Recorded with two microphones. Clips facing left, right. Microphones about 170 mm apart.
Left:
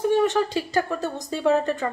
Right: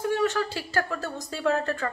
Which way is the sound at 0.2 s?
20° left (ahead or behind).